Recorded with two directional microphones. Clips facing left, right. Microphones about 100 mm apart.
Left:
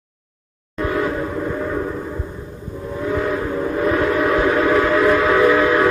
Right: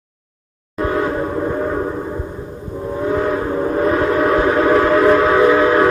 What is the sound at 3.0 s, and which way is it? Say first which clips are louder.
Steam whistle: right 3 dB; 35° right (ahead or behind).